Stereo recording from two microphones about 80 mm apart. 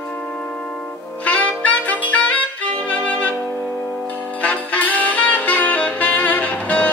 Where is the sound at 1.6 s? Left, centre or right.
Centre.